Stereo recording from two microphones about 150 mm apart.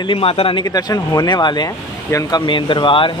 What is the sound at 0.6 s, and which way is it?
Speech, 25° left (ahead or behind).